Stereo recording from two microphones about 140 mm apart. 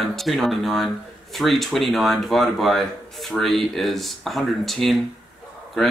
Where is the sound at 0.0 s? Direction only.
Centre (ahead or behind).